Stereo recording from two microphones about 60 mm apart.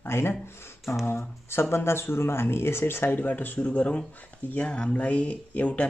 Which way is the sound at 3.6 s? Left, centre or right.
Left.